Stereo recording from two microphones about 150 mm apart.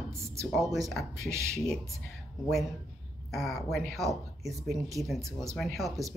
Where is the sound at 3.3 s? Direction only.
Centre (ahead or behind).